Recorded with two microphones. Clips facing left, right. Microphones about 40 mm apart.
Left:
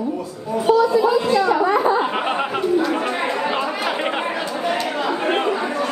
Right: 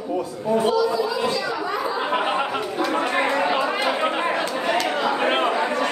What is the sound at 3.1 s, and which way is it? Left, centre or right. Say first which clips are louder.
Chatter: right 1 dB; right.